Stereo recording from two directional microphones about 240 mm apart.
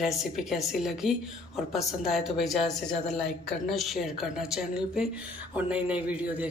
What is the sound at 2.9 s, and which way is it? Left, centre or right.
Speech, left.